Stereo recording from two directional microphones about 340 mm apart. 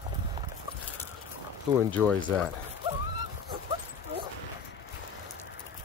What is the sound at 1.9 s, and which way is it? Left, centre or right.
Speech, centre.